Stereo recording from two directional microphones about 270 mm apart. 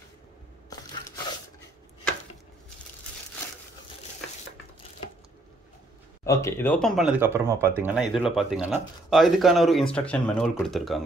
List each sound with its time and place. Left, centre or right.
0.7 s scrape: centre
6.2 s speech: centre